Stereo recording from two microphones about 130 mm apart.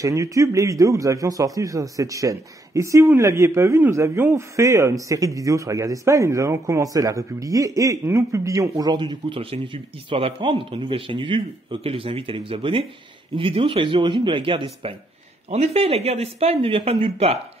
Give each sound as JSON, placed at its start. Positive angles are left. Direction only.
{"t": 0.0, "sound": "a man's voice", "side_deg": -25}